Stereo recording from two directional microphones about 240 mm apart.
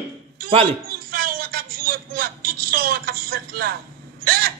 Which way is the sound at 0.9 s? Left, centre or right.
Right.